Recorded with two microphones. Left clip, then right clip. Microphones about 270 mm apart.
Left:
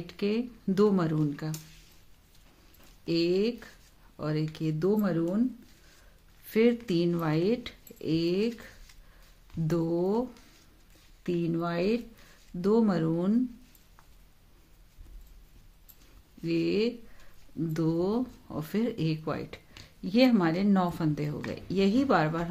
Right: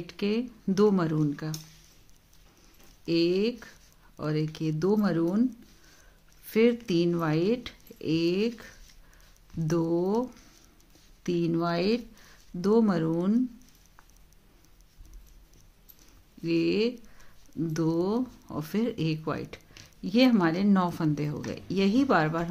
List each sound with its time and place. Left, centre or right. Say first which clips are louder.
0.0 s speech: right 1 dB; centre
3.1 s speech: right 1 dB; centre
6.4 s speech: right 1 dB; centre
11.2 s speech: right 3 dB; centre
16.4 s speech: right 2 dB; centre